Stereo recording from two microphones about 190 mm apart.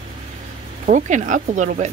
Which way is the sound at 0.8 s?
40° right (ahead or behind).